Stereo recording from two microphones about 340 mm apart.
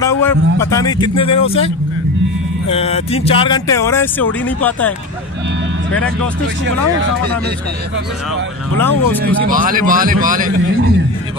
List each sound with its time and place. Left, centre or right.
0.0 s a man's voice: centre
2.7 s speech: centre
8.7 s speech: centre
9.2 s speech: right